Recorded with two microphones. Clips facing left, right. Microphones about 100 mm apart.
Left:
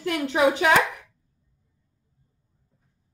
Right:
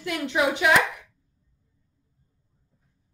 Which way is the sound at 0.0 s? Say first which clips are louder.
Left 3 dB; 40° left (ahead or behind).